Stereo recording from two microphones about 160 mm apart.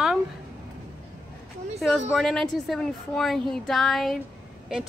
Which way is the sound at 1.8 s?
Centre (ahead or behind).